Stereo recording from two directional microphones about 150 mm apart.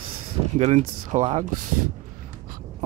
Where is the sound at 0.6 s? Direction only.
50° right (ahead or behind).